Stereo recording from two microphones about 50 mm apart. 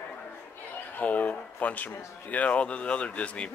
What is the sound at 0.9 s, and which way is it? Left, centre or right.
Speech, left.